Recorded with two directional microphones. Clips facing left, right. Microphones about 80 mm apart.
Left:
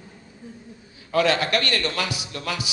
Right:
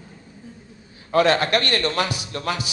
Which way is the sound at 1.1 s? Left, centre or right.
Right.